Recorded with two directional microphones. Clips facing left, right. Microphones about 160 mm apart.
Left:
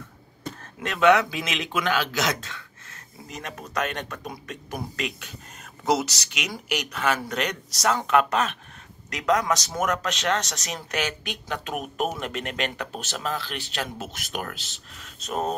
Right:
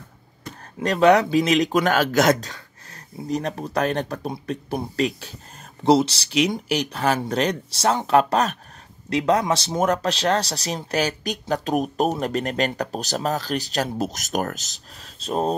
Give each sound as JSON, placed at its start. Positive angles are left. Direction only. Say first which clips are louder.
{"t": 0.7, "sound": "speech", "louder": "right 3 dB", "side_deg": -35}
{"t": 2.5, "sound": "speech", "louder": "right 1 dB", "side_deg": -35}